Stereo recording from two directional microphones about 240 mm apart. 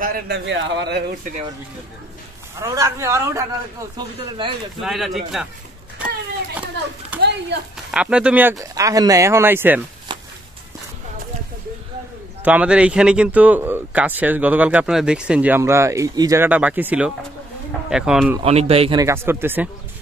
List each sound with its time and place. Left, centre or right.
0.0 s speech: right
2.6 s speech: centre
4.8 s speech: centre
7.1 s a sound: centre
7.9 s speech: centre
10.1 s a sound: centre
12.4 s speech: centre
18.4 s speech: right; by 19.7 s centre